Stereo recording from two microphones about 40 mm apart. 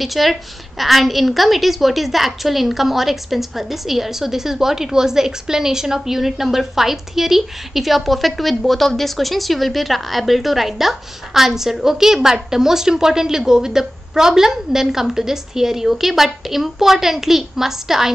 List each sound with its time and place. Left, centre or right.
0.0 s a woman's voice: centre